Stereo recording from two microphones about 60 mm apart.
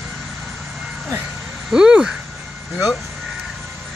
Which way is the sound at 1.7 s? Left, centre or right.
Centre.